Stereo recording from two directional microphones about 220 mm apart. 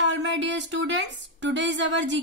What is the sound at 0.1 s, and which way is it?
Speech, 55° right (ahead or behind).